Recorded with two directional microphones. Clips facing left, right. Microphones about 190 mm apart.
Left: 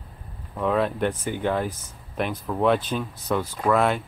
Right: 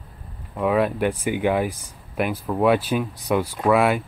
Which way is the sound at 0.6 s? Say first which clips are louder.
Right 3 dB; 10° right (ahead or behind).